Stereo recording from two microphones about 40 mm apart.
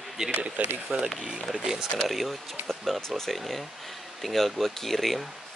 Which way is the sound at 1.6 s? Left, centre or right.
Centre.